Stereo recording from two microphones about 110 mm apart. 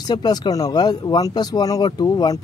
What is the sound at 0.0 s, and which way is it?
Speech, 40° left (ahead or behind).